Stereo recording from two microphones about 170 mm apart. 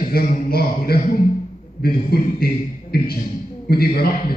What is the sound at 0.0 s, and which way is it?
A man's voice, 55° left (ahead or behind).